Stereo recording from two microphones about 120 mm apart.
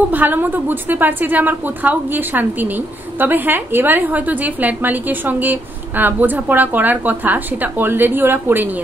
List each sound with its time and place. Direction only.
0.1 s a woman's voice: 15° right (ahead or behind)